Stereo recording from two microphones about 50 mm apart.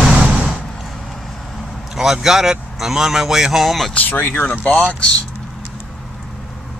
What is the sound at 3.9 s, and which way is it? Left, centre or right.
Speech, left.